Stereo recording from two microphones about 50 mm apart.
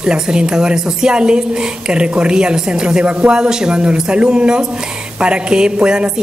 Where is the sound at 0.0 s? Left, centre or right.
Centre.